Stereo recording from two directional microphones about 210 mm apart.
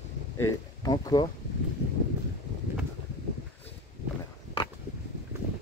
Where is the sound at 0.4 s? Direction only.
15° left (ahead or behind).